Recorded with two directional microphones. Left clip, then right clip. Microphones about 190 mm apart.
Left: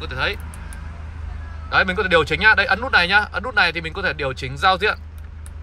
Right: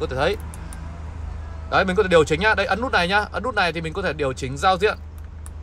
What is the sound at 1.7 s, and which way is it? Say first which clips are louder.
Speech: left 1 dB; 25° right (ahead or behind).